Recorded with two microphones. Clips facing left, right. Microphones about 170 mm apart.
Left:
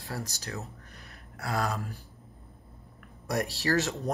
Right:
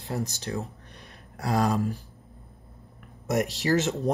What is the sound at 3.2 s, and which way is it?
Speech, 20° right (ahead or behind).